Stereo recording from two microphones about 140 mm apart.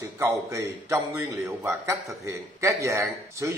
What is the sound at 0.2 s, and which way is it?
A man's voice, 20° right (ahead or behind).